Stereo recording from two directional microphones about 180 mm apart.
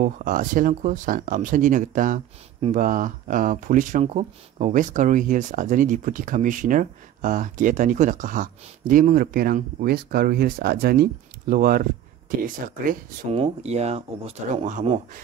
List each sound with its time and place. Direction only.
0.0 s speech: 50° right (ahead or behind)
13.3 s speech: 35° right (ahead or behind)